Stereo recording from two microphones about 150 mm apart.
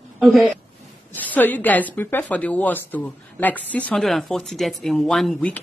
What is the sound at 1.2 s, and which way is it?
A woman's voice, 10° left (ahead or behind).